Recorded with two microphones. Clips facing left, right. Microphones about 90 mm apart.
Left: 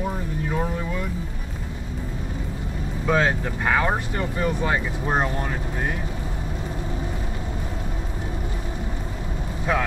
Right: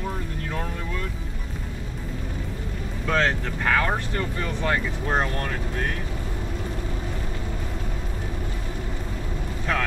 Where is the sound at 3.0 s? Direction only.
15° left (ahead or behind).